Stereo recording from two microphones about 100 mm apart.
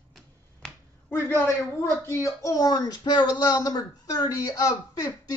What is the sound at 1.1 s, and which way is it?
A woman's voice, 20° left (ahead or behind).